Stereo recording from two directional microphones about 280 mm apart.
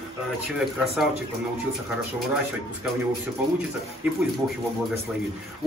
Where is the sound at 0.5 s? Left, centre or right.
Centre.